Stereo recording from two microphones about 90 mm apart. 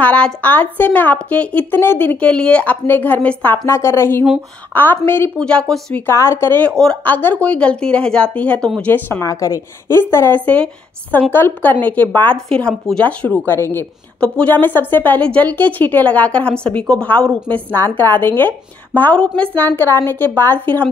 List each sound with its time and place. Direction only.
0.0 s a woman's voice: 15° left (ahead or behind)
3.6 s a woman's voice: 30° left (ahead or behind)
5.4 s a woman's voice: 10° left (ahead or behind)
6.0 s a woman's voice: 30° left (ahead or behind); by 8.9 s 10° left (ahead or behind)
9.2 s a woman's voice: 40° left (ahead or behind)
10.4 s a woman's voice: 15° left (ahead or behind)
13.5 s a woman's voice: 25° left (ahead or behind)
14.2 s a woman's voice: 15° left (ahead or behind)
17.7 s a woman's voice: 25° left (ahead or behind)